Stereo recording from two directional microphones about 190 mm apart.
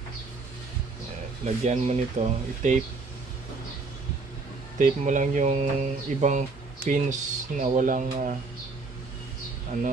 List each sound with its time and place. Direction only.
1.4 s speech: 35° right (ahead or behind)
4.7 s speech: 40° right (ahead or behind)